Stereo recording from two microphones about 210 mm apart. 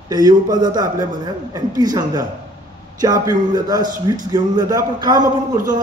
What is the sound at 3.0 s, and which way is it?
A man's voice, 20° right (ahead or behind).